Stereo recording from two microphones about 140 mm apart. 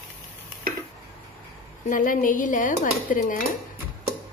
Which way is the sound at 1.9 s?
75° left (ahead or behind).